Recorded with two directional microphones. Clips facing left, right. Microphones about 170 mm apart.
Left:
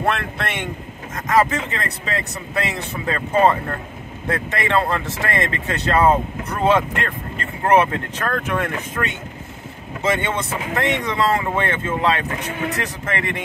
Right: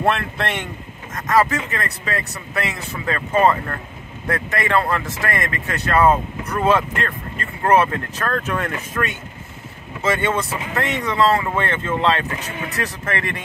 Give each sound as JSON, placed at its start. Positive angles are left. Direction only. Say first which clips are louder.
{"t": 0.0, "sound": "speech", "louder": "right 2 dB", "side_deg": 0}
{"t": 1.3, "sound": "speech", "louder": "even", "side_deg": 20}
{"t": 10.0, "sound": "speech", "louder": "right 1 dB", "side_deg": 20}